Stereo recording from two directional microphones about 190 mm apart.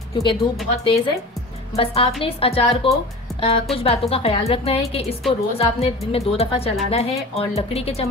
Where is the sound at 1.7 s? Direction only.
30° left (ahead or behind).